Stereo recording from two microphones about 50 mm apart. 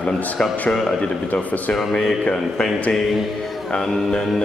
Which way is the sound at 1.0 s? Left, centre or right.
Left.